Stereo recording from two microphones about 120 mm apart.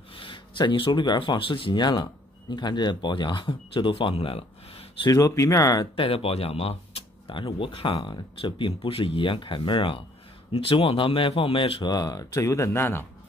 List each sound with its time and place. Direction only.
0.1 s speech: 45° left (ahead or behind)
5.0 s speech: 30° left (ahead or behind)
5.9 s speech: 50° left (ahead or behind)
11.9 s speech: 30° left (ahead or behind)